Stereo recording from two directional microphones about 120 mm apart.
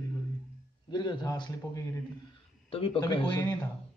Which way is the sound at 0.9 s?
35° left (ahead or behind).